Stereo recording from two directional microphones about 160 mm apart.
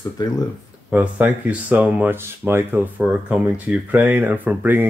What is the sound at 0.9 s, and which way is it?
Speech, 10° right (ahead or behind).